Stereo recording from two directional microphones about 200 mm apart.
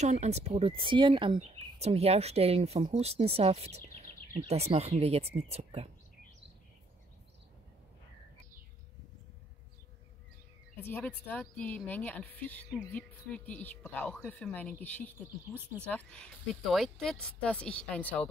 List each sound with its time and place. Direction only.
0.0 s speech: 35° right (ahead or behind)
10.9 s speech: 10° left (ahead or behind)